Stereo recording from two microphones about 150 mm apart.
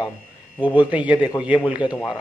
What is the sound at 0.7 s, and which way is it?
Speech, 10° right (ahead or behind).